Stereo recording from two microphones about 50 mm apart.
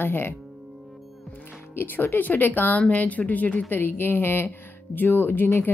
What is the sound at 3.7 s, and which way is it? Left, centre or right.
A woman's voice, left.